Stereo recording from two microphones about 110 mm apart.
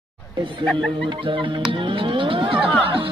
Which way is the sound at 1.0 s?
50° right (ahead or behind).